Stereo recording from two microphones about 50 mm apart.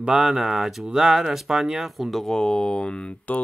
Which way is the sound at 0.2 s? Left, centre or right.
Centre.